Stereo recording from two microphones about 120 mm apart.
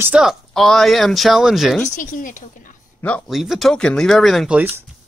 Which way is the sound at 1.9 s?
90° left.